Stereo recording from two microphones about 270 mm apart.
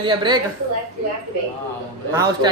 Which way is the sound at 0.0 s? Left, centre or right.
Centre.